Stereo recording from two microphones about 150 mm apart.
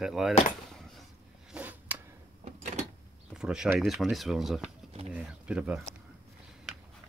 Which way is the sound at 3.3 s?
5° right (ahead or behind).